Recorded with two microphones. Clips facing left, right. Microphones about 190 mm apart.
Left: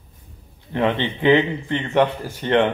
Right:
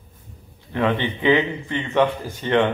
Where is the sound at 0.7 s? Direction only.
20° left (ahead or behind).